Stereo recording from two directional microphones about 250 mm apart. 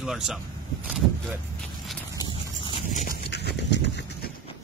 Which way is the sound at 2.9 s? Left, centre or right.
Left.